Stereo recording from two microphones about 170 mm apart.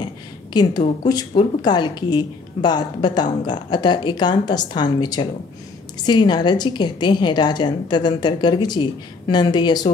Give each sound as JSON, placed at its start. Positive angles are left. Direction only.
{"t": 0.0, "sound": "a woman's voice", "side_deg": 25}